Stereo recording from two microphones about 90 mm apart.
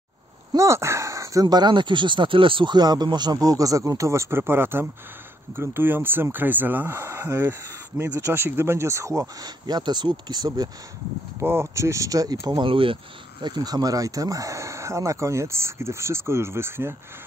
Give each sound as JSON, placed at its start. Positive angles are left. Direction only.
{"t": 0.6, "sound": "speech", "side_deg": -30}
{"t": 9.7, "sound": "speech", "side_deg": -55}
{"t": 11.3, "sound": "speech", "side_deg": -30}
{"t": 12.6, "sound": "speech", "side_deg": -80}